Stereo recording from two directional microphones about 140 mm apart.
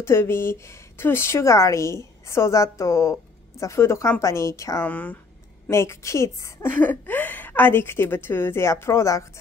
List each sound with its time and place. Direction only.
0.0 s speech: 20° left (ahead or behind)
4.8 s a woman's voice: 10° left (ahead or behind)